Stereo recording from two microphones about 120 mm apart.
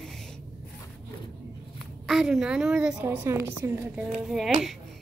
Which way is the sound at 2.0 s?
5° right (ahead or behind).